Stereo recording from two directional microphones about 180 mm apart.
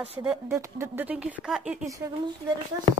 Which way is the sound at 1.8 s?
20° right (ahead or behind).